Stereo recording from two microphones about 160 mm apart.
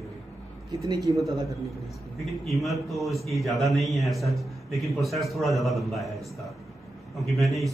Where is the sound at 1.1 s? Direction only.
30° right (ahead or behind).